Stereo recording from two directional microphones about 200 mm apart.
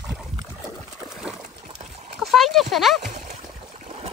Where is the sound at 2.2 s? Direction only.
Centre (ahead or behind).